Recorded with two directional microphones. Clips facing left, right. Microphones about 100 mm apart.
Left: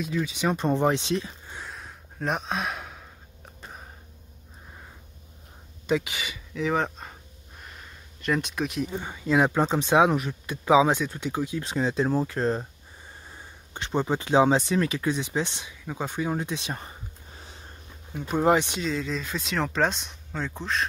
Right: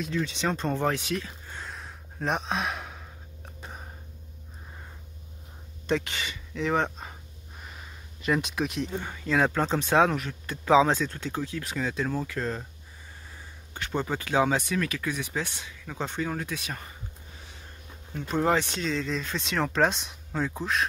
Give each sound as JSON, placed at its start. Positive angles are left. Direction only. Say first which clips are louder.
{"t": 0.0, "sound": "speech", "louder": "left 2 dB", "side_deg": 5}
{"t": 1.5, "sound": "gasp", "louder": "even", "side_deg": 0}
{"t": 5.9, "sound": "a sound", "louder": "left 2 dB", "side_deg": 5}
{"t": 9.0, "sound": "speech", "louder": "left 3 dB", "side_deg": 15}
{"t": 18.1, "sound": "speech", "louder": "left 3 dB", "side_deg": 10}
{"t": 18.8, "sound": "speech", "louder": "left 1 dB", "side_deg": 5}